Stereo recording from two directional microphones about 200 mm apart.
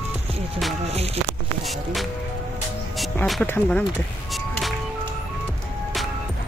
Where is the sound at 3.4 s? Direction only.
10° left (ahead or behind).